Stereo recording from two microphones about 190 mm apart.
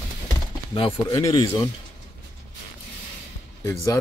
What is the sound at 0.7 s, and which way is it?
Speech, 25° left (ahead or behind).